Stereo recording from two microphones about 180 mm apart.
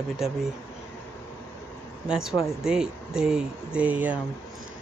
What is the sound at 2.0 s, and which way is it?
Speech, 5° right (ahead or behind).